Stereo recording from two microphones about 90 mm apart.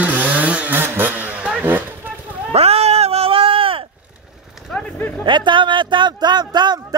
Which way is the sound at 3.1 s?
90° right.